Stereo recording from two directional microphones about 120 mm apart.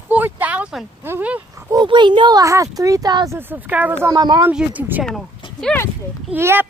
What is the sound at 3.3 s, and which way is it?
Speech, 15° right (ahead or behind).